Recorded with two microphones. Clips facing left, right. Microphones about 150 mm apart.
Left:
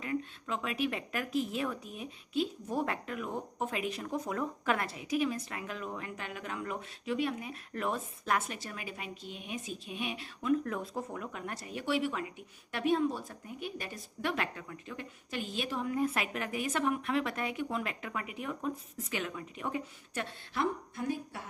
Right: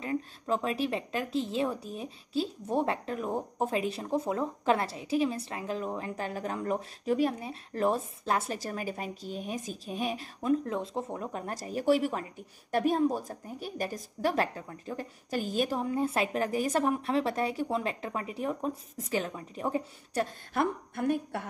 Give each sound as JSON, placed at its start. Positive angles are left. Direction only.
{"t": 0.0, "sound": "speech", "side_deg": -35}
{"t": 20.5, "sound": "a woman's voice", "side_deg": -60}